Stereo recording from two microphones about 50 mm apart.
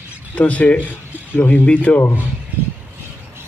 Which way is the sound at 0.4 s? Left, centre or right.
Left.